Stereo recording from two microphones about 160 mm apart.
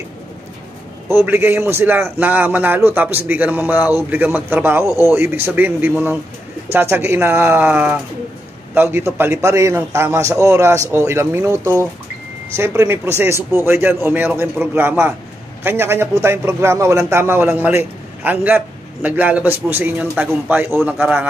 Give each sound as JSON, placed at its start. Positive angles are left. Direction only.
{"t": 1.0, "sound": "a man's voice", "side_deg": -15}